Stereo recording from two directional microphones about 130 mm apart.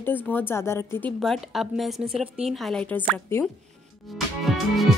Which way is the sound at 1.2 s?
Centre (ahead or behind).